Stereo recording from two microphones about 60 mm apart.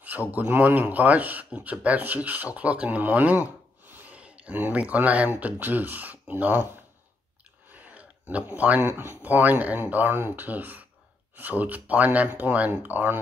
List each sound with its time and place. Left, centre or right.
0.3 s speech: right
7.7 s a sound: right
8.8 s speech: right
9.2 s speech: right